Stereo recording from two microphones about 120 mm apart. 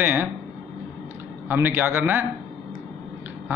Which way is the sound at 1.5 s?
15° right (ahead or behind).